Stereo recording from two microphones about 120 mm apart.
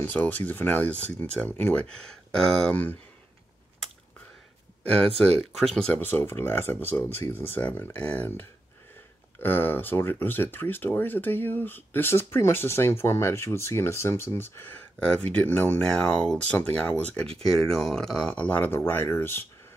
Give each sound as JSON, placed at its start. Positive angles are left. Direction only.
{"t": 0.0, "sound": "speech", "side_deg": 15}
{"t": 4.9, "sound": "speech", "side_deg": -55}
{"t": 5.8, "sound": "speech", "side_deg": 10}